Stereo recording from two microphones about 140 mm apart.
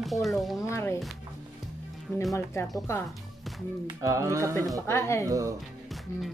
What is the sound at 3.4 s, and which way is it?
Music, centre (ahead or behind).